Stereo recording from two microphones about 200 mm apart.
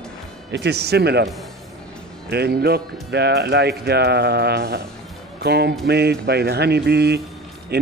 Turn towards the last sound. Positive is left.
turn(degrees=-55)  # may be behind; listen again after turning